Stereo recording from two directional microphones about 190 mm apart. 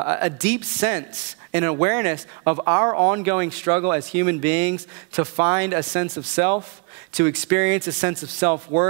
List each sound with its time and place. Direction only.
0.0 s speech: 15° right (ahead or behind)